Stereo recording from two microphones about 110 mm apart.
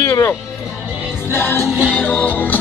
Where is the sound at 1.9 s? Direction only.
15° left (ahead or behind).